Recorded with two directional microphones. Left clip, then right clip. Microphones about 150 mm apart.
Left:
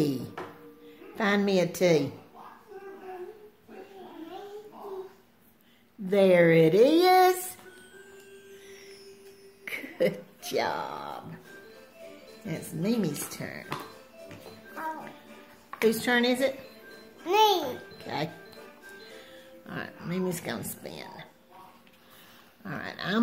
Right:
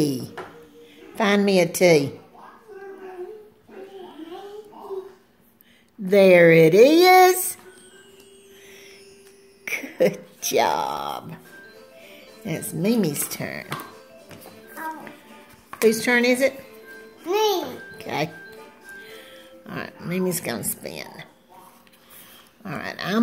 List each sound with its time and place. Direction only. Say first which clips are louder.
0.0 s a sound: right 5 dB; 15° right (ahead or behind)
1.1 s speech: right 7 dB; 20° right (ahead or behind)
6.0 s speech: right 7 dB; 25° right (ahead or behind)
9.7 s a sound: right 7 dB; 25° right (ahead or behind)
10.4 s speech: right 9 dB; 25° right (ahead or behind)
12.4 s speech: right 7 dB; 30° right (ahead or behind)
16.0 s speech: right 6 dB; 15° right (ahead or behind)
17.3 s a child's voice: right 1 dB; 20° left (ahead or behind)
17.9 s speech: right 11 dB; 20° right (ahead or behind)
19.3 s speech: right 4 dB; 15° right (ahead or behind)
22.6 s speech: right 6 dB; 20° right (ahead or behind)